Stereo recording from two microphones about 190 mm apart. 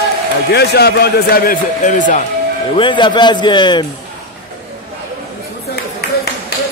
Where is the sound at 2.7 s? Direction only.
25° left (ahead or behind).